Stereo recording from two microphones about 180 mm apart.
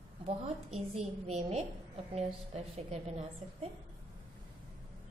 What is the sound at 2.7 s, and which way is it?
Speech, 35° right (ahead or behind).